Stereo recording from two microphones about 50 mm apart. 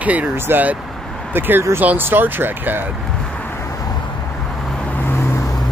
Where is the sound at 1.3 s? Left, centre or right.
Right.